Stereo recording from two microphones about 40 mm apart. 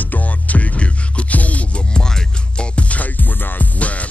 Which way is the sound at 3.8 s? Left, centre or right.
Left.